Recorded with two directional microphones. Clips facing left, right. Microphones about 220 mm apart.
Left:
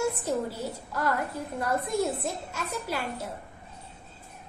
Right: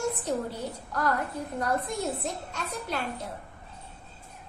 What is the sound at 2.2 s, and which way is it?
Speech, 5° left (ahead or behind).